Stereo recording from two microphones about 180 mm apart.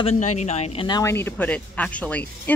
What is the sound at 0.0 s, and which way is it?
Speech, 40° left (ahead or behind).